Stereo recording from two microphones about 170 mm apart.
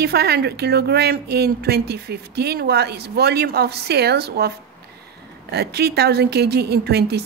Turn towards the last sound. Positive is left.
turn(degrees=-70)  # may be behind; listen again after turning